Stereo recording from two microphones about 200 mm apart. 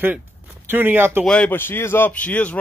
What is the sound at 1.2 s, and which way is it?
A man's voice, 5° left (ahead or behind).